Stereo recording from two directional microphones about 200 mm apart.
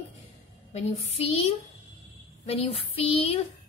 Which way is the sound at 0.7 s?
30° left (ahead or behind).